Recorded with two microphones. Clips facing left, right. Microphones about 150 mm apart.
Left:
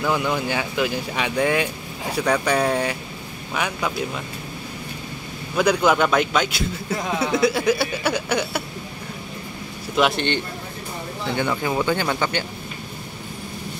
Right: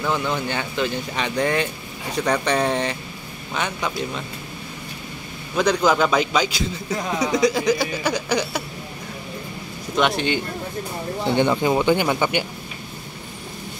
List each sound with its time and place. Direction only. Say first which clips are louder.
0.0 s a man's voice: left 1 dB; 5° left (ahead or behind)
5.6 s a man's voice: even; 5° left (ahead or behind)
9.9 s a man's voice: even; centre (ahead or behind)
11.3 s speech: right 4 dB; 20° right (ahead or behind)